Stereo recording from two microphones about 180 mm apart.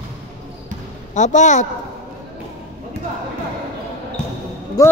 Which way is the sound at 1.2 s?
40° left (ahead or behind).